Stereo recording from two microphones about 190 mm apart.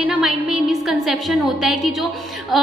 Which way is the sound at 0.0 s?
5° right (ahead or behind).